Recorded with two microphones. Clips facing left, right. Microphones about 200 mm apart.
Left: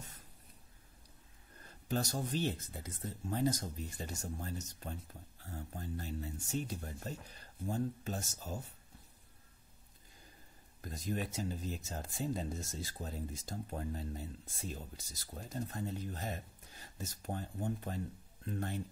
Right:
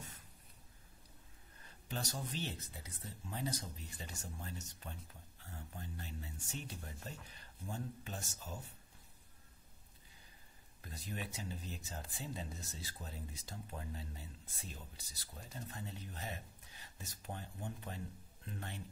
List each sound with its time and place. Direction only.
1.6 s speech: 45° left (ahead or behind)
10.8 s speech: 40° left (ahead or behind)